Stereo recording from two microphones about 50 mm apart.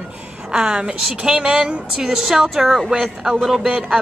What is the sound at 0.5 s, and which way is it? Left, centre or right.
A woman's voice, centre.